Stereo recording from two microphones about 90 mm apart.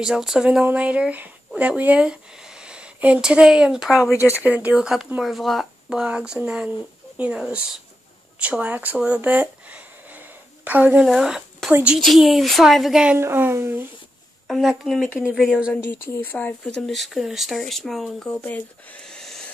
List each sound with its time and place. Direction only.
0.0 s speech: 5° right (ahead or behind)
4.1 s speech: 30° left (ahead or behind)
4.4 s speech: 15° right (ahead or behind)
4.7 s speech: 5° right (ahead or behind)
5.9 s speech: 10° right (ahead or behind)
8.9 s a sound: 15° right (ahead or behind)
11.1 s speech: 5° right (ahead or behind)
13.2 s speech: 25° right (ahead or behind)
14.5 s speech: centre (ahead or behind)
15.7 s speech: 20° left (ahead or behind)
16.6 s speech: 5° left (ahead or behind)
18.4 s speech: 15° left (ahead or behind)